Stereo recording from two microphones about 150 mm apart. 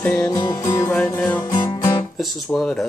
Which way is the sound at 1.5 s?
25° left (ahead or behind).